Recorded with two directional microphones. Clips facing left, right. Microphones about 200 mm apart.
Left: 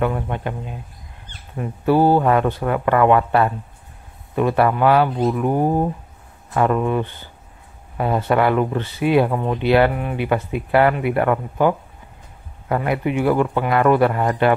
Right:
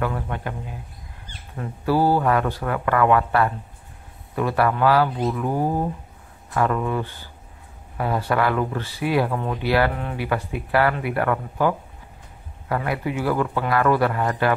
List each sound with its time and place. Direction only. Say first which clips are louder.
0.0 s speech: left 4 dB; 20° left (ahead or behind)